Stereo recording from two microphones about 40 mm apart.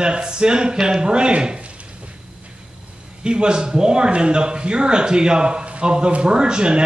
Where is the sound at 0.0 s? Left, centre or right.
Right.